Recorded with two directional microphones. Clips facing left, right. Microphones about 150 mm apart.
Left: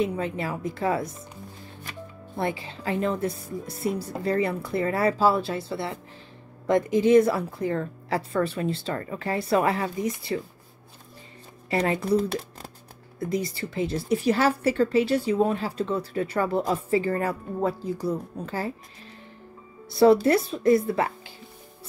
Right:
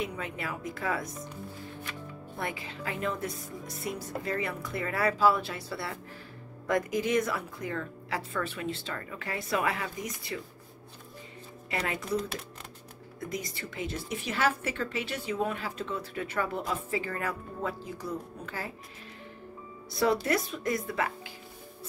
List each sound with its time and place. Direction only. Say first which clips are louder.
0.0 s a woman's voice: left 8 dB; 30° left (ahead or behind)
11.7 s a woman's voice: left 8 dB; 30° left (ahead or behind)
20.0 s a woman's voice: left 9 dB; 30° left (ahead or behind)